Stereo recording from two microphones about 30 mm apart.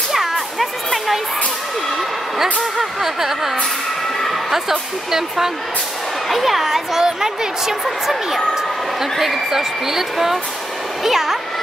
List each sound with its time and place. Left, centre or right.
0.1 s music: centre
2.8 s speech: centre
6.2 s speech: centre
9.2 s speech: centre